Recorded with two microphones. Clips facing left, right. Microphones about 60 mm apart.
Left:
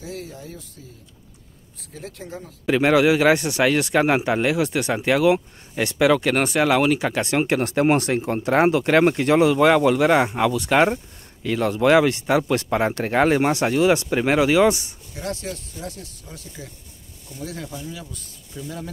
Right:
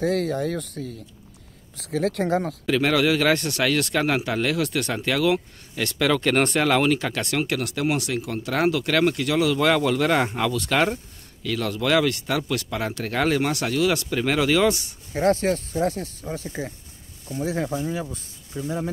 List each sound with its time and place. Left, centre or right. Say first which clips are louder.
0.0 s speech: right 12 dB; right
1.8 s speech: right 13 dB; right
2.6 s a man's voice: left 7 dB; centre
15.1 s speech: right 10 dB; right